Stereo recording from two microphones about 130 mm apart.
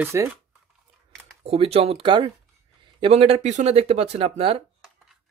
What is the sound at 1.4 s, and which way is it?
Speech, 50° right (ahead or behind).